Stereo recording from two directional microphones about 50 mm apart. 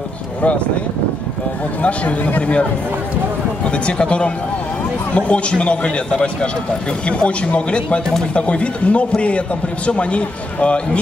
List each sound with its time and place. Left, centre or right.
1.8 s a man's voice: left
3.6 s a man's voice: left